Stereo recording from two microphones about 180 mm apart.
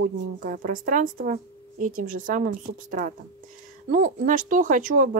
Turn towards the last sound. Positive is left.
turn(degrees=-50)  # may be behind; listen again after turning